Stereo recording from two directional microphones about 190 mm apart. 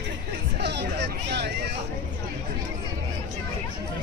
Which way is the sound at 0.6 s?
60° right (ahead or behind).